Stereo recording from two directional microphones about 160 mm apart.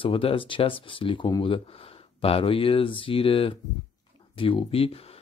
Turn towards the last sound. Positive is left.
turn(degrees=35)  # may be behind; listen again after turning